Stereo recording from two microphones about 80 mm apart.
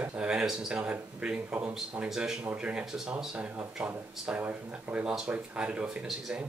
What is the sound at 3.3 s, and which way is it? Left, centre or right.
Speech, centre.